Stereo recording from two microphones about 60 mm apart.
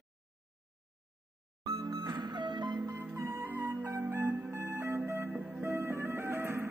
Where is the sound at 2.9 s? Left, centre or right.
Right.